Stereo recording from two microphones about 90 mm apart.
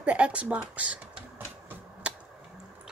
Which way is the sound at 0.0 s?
15° right (ahead or behind).